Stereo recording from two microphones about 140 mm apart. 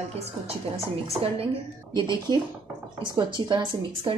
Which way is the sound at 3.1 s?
35° right (ahead or behind).